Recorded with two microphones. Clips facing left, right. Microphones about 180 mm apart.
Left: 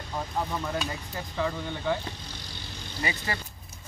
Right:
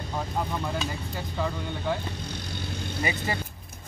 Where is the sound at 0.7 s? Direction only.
Centre (ahead or behind).